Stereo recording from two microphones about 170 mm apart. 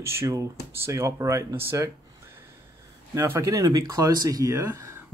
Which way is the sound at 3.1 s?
15° right (ahead or behind).